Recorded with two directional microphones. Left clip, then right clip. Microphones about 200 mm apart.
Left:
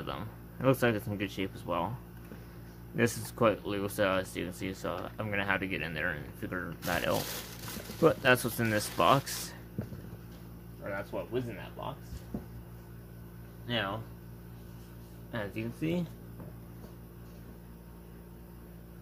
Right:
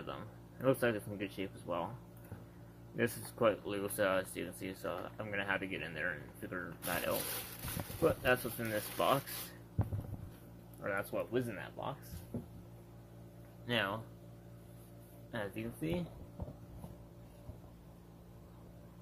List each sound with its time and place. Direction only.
0.0 s speech: 10° left (ahead or behind)
3.0 s speech: 10° left (ahead or behind)
10.8 s speech: 40° right (ahead or behind)
13.7 s speech: 30° right (ahead or behind)
15.3 s speech: 5° right (ahead or behind)